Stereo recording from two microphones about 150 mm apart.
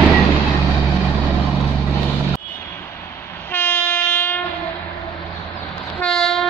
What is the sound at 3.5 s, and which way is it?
Train, 15° left (ahead or behind).